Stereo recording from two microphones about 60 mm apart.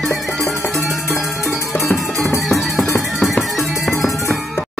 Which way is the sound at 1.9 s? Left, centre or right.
Centre.